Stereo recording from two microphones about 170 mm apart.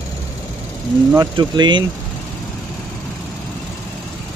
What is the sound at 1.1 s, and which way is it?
Speech, 25° right (ahead or behind).